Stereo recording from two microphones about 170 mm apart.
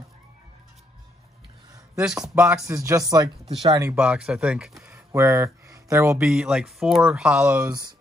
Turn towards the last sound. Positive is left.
turn(degrees=-20)  # may be behind; listen again after turning